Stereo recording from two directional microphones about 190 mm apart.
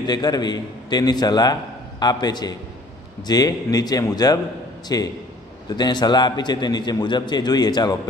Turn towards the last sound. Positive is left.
turn(degrees=20)  # may be behind; listen again after turning